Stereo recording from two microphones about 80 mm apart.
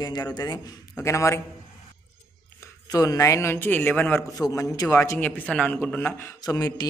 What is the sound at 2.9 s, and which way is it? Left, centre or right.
A man's voice, left.